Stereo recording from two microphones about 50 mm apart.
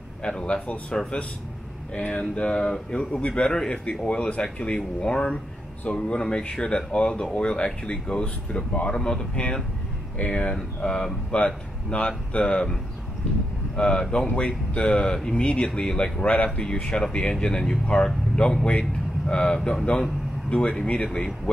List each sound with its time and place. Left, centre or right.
0.2 s speech: centre
2.0 s speech: left
13.7 s speech: centre